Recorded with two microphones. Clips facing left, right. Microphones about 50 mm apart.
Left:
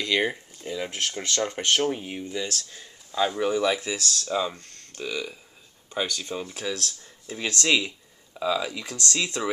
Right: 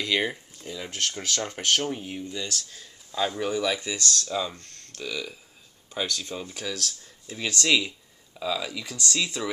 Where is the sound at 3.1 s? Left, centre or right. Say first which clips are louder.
Left 3 dB; centre.